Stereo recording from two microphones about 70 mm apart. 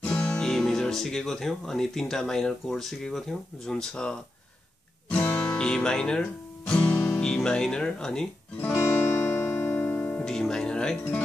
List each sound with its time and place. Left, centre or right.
0.0 s speech: centre
5.1 s music: left
5.6 s speech: centre
8.7 s music: left
10.2 s speech: centre